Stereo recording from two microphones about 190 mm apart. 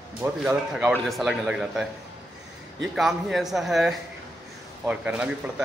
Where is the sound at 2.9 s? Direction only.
Centre (ahead or behind).